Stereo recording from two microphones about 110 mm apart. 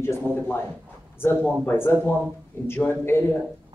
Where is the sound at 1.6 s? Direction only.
20° left (ahead or behind).